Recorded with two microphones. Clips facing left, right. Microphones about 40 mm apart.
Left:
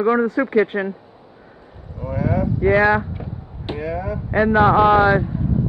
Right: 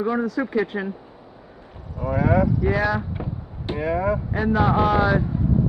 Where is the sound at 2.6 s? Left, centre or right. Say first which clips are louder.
Left 7 dB; left.